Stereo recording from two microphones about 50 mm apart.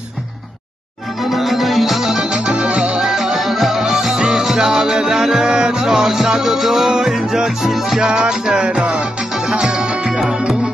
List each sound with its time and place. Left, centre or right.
1.2 s music: centre
2.1 s music: right
3.1 s music: centre; by 9.0 s right
9.5 s music: centre